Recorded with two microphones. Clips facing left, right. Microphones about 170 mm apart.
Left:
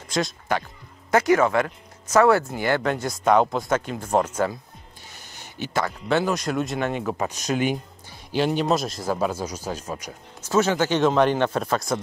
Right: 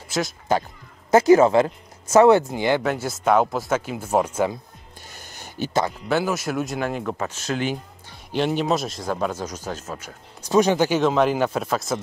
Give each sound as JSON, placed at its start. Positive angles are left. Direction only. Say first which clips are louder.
{"t": 1.1, "sound": "speech", "louder": "right 5 dB", "side_deg": -25}
{"t": 2.8, "sound": "speech", "louder": "even", "side_deg": -5}
{"t": 6.0, "sound": "speech", "louder": "even", "side_deg": -5}
{"t": 7.2, "sound": "speech", "louder": "left 2 dB", "side_deg": 15}
{"t": 8.3, "sound": "speech", "louder": "even", "side_deg": 0}
{"t": 10.4, "sound": "speech", "louder": "right 3 dB", "side_deg": -15}
{"t": 11.0, "sound": "speech", "louder": "even", "side_deg": 0}